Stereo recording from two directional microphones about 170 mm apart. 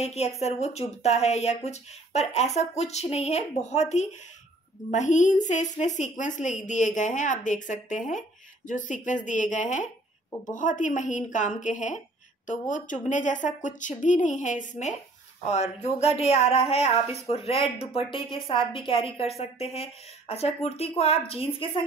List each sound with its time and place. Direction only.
0.0 s a woman's voice: 40° left (ahead or behind)